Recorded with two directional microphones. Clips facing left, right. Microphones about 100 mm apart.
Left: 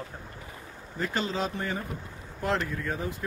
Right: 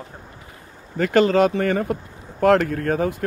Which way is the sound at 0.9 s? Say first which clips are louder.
Right 14 dB; 70° right (ahead or behind).